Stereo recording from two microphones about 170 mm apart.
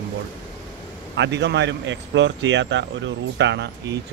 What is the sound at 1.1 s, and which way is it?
Speech, 90° right.